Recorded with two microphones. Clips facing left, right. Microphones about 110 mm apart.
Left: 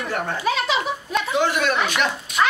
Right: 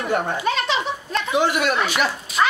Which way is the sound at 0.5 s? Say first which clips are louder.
Left 3 dB; 5° left (ahead or behind).